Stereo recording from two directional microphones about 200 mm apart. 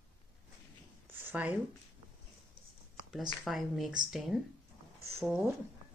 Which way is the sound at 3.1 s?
Centre (ahead or behind).